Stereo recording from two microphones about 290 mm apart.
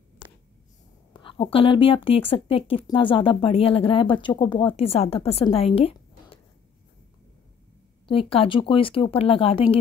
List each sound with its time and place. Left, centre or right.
1.1 s speech: centre
5.8 s a sound: centre
8.1 s speech: centre